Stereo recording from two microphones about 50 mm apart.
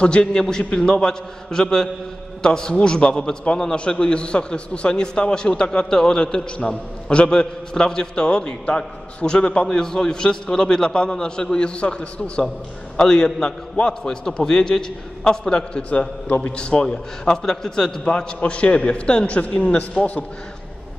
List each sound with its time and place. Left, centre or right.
0.0 s a man's voice: centre
16.3 s a man's voice: left
16.5 s a man's voice: centre
18.0 s a man's voice: left